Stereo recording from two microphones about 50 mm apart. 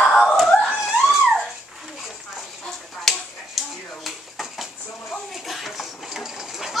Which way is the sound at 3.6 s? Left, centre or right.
Centre.